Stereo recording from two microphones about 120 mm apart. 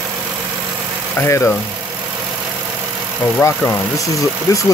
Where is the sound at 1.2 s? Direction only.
25° left (ahead or behind).